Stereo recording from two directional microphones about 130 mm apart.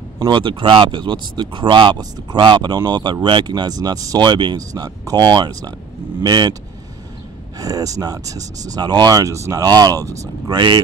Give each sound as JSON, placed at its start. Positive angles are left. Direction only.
{"t": 0.2, "sound": "speech", "side_deg": -40}
{"t": 7.5, "sound": "speech", "side_deg": -25}